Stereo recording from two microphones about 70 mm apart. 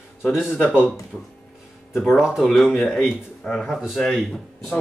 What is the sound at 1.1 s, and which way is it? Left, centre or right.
Speech, centre.